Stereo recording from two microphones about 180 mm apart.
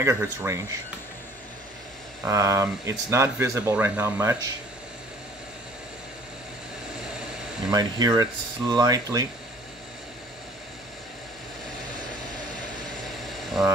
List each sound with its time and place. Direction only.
0.0 s speech: 15° right (ahead or behind)
2.2 s speech: 15° right (ahead or behind)
7.7 s speech: 20° right (ahead or behind)
13.3 s a sound: centre (ahead or behind)